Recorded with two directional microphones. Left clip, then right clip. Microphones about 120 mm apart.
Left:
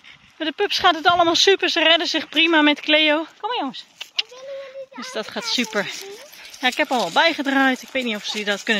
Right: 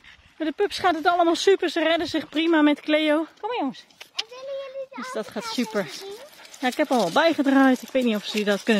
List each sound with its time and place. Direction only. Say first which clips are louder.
0.4 s speech: left 4 dB; 15° right (ahead or behind)
3.4 s a sound: left 3 dB; 20° right (ahead or behind)
5.0 s speech: left 5 dB; 15° right (ahead or behind)
6.8 s speech: right 1 dB; 45° right (ahead or behind)
7.2 s speech: left 2 dB; 70° right (ahead or behind)
7.9 s speech: even; 90° right